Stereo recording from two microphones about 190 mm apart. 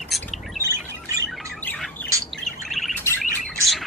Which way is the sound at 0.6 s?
15° right (ahead or behind).